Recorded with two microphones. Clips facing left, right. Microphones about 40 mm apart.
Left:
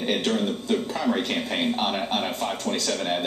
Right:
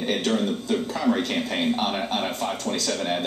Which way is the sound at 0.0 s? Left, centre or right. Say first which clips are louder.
Even; centre.